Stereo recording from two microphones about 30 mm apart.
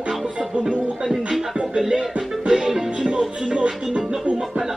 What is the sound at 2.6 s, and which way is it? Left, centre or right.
Music, centre.